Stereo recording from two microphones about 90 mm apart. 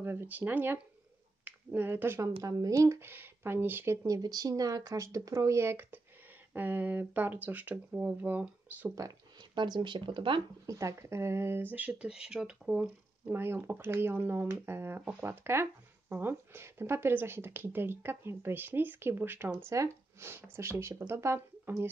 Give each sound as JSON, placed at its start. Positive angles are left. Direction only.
{"t": 0.0, "sound": "speech", "side_deg": -25}
{"t": 2.4, "sound": "speech", "side_deg": -40}
{"t": 9.6, "sound": "speech", "side_deg": -55}
{"t": 10.7, "sound": "speech", "side_deg": -35}
{"t": 13.3, "sound": "speech", "side_deg": -25}